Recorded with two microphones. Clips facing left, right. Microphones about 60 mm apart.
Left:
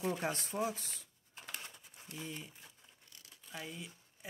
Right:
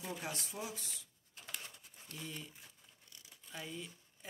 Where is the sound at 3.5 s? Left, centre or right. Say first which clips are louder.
Even; centre.